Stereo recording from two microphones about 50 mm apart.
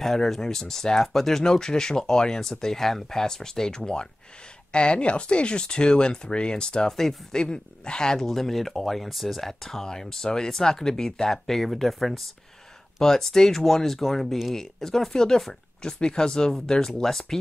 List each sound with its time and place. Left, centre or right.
0.0 s speech: centre
6.9 s speech: centre